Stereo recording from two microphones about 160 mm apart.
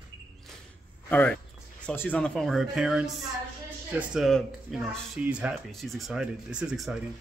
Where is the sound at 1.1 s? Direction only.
10° left (ahead or behind).